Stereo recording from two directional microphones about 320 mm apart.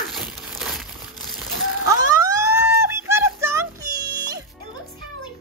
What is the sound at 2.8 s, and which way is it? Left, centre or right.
Music, centre.